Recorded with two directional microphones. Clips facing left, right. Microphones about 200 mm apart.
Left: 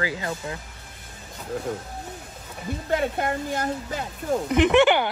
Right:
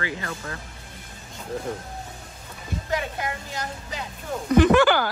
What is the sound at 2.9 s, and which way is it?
A woman's voice, 50° left (ahead or behind).